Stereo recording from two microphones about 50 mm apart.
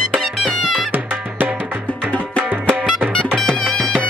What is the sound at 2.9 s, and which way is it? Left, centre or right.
Music, centre.